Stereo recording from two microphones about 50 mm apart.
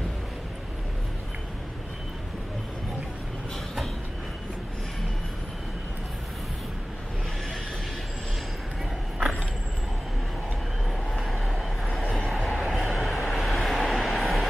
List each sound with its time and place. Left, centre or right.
11.1 s vehicle: centre